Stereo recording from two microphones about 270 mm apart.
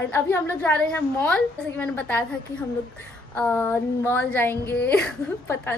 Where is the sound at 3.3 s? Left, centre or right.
Centre.